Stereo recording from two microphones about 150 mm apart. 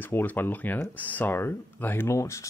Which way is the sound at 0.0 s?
10° left (ahead or behind).